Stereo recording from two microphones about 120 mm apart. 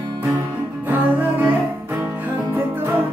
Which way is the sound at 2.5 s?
20° right (ahead or behind).